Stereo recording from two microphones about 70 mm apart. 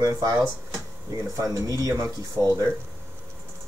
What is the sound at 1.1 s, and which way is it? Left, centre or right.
Speech, right.